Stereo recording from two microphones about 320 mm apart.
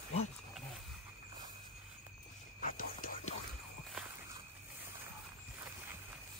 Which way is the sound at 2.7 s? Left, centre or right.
Left.